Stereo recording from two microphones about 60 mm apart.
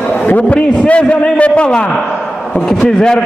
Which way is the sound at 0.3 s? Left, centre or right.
Left.